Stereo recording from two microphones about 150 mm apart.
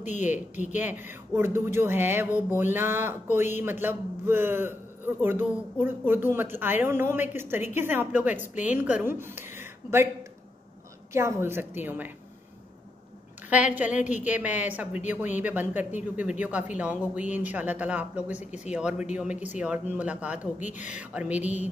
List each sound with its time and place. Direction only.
0.0 s speech: 55° left (ahead or behind)
0.7 s speech: 10° right (ahead or behind)
11.1 s speech: 15° right (ahead or behind)
13.5 s speech: 10° right (ahead or behind)